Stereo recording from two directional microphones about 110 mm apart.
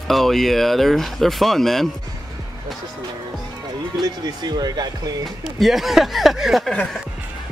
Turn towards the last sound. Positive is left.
turn(degrees=0)  # may be behind; listen again after turning